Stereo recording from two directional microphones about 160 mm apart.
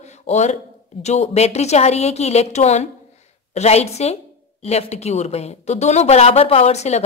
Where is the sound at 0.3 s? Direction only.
45° left (ahead or behind).